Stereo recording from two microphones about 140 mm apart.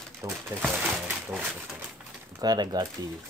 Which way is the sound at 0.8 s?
10° right (ahead or behind).